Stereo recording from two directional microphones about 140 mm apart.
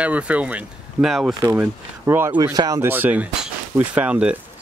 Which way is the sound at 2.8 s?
15° right (ahead or behind).